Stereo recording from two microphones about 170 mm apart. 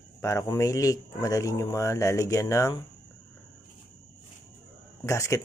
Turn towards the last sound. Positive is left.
turn(degrees=15)  # may be behind; listen again after turning